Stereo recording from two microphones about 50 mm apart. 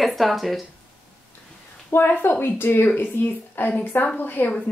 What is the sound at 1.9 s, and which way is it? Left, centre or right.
A woman's voice, left.